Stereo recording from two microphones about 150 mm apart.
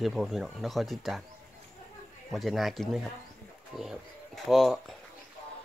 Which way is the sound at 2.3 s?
Centre (ahead or behind).